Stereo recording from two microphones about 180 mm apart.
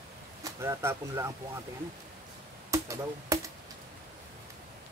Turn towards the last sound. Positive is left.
turn(degrees=-20)  # may be behind; listen again after turning